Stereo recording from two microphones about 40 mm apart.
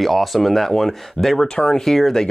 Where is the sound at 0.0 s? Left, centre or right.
Centre.